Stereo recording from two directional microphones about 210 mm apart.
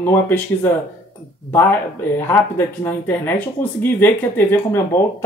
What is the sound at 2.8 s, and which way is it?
Speech, 10° left (ahead or behind).